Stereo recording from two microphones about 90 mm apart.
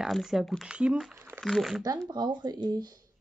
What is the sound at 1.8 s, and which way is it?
Speech, 45° right (ahead or behind).